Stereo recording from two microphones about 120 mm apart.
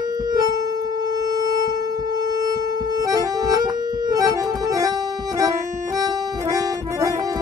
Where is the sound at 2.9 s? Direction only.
30° right (ahead or behind).